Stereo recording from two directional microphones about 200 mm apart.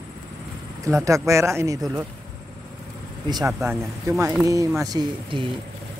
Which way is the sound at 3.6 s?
15° right (ahead or behind).